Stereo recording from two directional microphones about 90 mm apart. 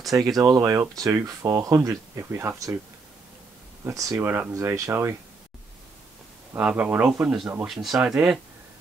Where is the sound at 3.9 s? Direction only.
40° right (ahead or behind).